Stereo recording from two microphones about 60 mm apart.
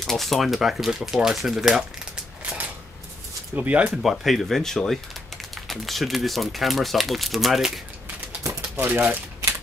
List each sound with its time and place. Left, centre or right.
0.0 s speech: centre
3.5 s speech: right
3.9 s speech: centre
8.7 s speech: right